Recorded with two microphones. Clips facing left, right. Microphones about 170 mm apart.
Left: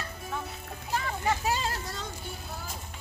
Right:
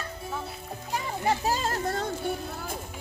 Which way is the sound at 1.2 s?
40° right (ahead or behind).